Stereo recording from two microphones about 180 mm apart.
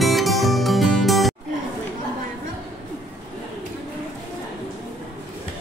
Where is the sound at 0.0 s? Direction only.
Centre (ahead or behind).